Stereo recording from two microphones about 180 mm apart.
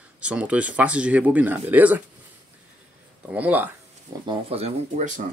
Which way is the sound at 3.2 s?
10° right (ahead or behind).